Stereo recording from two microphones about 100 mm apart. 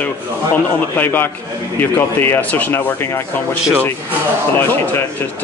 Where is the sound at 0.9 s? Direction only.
20° left (ahead or behind).